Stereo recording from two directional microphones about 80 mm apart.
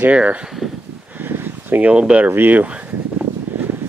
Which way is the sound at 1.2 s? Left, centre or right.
Right.